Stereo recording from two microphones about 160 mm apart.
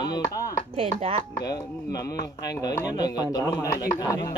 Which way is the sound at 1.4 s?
25° left (ahead or behind).